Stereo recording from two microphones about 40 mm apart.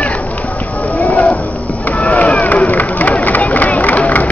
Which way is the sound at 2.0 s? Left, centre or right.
Left.